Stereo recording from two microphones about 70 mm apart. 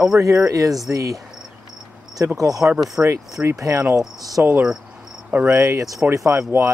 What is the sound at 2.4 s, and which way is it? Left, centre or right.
Speech, right.